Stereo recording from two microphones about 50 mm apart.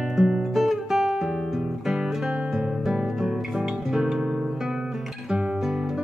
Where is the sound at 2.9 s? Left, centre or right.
Centre.